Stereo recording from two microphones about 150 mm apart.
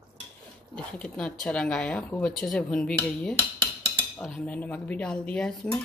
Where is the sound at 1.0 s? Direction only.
5° left (ahead or behind).